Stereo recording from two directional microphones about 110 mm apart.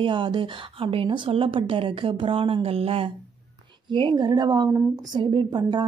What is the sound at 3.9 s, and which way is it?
A woman's voice, 45° right (ahead or behind).